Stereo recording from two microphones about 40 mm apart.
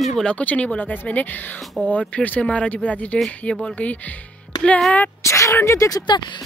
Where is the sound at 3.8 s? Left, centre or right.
Left.